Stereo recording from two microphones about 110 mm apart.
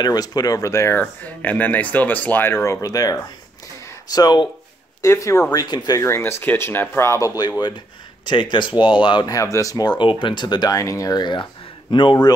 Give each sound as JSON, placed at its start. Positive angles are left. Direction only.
{"t": 0.0, "sound": "speech", "side_deg": 35}
{"t": 5.0, "sound": "speech", "side_deg": 25}
{"t": 5.5, "sound": "speech", "side_deg": 40}
{"t": 5.9, "sound": "speech", "side_deg": 25}
{"t": 8.3, "sound": "speech", "side_deg": 45}
{"t": 9.3, "sound": "speech", "side_deg": 30}